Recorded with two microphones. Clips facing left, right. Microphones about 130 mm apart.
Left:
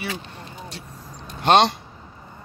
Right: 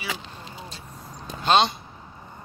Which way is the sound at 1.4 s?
70° left (ahead or behind).